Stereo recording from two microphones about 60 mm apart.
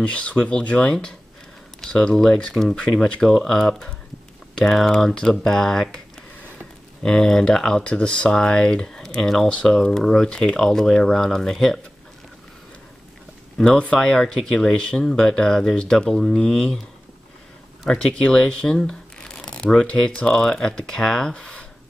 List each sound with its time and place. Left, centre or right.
0.0 s speech: left
7.0 s speech: centre
13.7 s speech: centre
17.8 s speech: centre